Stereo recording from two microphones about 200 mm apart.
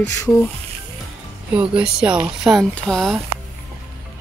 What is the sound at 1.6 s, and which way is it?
Speech, 5° right (ahead or behind).